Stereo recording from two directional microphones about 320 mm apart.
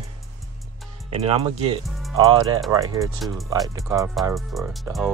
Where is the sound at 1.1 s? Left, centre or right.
Centre.